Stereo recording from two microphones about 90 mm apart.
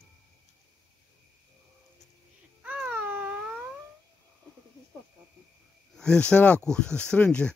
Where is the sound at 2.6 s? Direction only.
15° right (ahead or behind).